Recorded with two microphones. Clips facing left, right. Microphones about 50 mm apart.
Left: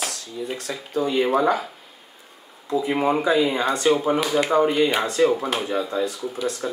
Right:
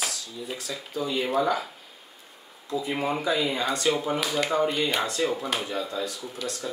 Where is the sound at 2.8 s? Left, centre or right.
Left.